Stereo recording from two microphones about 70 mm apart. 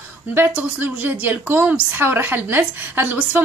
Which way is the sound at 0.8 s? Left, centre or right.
Right.